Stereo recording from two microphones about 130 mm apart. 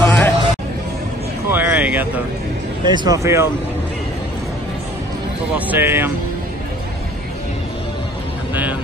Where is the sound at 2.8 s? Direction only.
30° right (ahead or behind).